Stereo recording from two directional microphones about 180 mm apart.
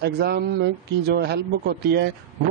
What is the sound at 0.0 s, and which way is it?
Speech, 65° right (ahead or behind).